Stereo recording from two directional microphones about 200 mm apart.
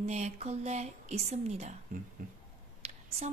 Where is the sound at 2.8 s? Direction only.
30° right (ahead or behind).